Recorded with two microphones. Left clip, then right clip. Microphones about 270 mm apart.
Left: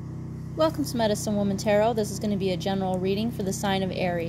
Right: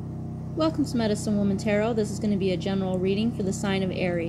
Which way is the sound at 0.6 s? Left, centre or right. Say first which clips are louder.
Left 2 dB; left.